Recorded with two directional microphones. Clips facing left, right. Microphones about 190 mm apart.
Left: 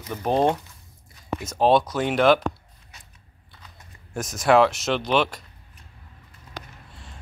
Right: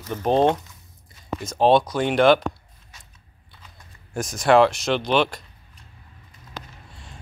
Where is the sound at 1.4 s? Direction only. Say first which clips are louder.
Right 2 dB; 5° left (ahead or behind).